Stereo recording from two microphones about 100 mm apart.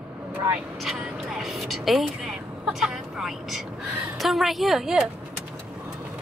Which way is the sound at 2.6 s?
5° right (ahead or behind).